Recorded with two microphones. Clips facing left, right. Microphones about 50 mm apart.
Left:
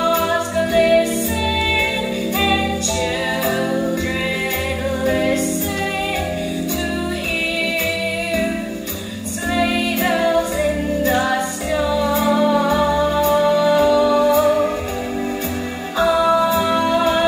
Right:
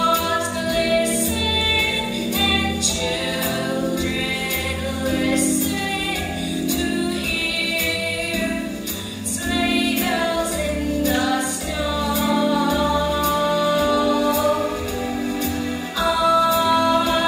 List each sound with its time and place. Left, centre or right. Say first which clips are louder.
0.1 s music: left 3 dB; left
5.0 s music: left 2 dB; left
9.6 s music: left 2 dB; left
16.0 s music: left 2 dB; left